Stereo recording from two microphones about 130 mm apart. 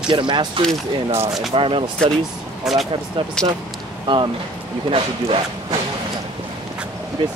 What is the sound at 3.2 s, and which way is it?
Speech, 45° right (ahead or behind).